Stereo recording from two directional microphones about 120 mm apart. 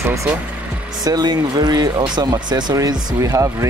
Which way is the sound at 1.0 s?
35° right (ahead or behind).